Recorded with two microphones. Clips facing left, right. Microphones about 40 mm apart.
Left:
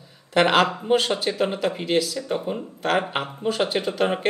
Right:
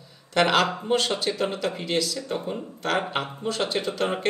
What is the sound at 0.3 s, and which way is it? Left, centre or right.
Speech, centre.